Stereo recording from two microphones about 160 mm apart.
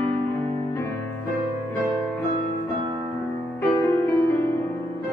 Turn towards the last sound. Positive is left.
turn(degrees=15)  # may be behind; listen again after turning